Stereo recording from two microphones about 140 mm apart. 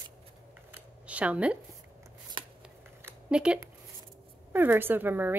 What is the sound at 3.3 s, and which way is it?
Speech, 5° right (ahead or behind).